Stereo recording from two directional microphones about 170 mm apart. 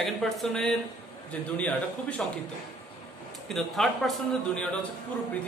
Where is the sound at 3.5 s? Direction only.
Centre (ahead or behind).